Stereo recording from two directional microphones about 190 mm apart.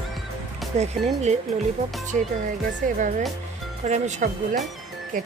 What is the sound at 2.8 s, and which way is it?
Speech, 45° right (ahead or behind).